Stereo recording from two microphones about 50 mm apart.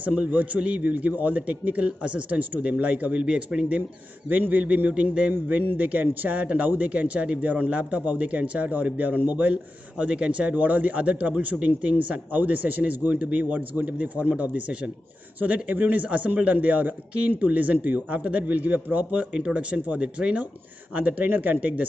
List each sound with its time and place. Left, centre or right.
0.0 s a man's voice: right
4.3 s a man's voice: right
10.5 s a man's voice: right
19.3 s a man's voice: right
20.9 s a man's voice: right
21.5 s a man's voice: right